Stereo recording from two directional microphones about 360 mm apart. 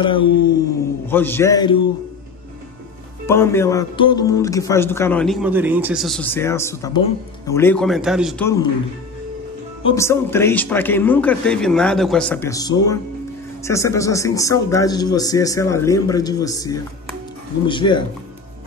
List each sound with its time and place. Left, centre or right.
1.0 s speech: centre
3.3 s speech: centre
9.8 s speech: centre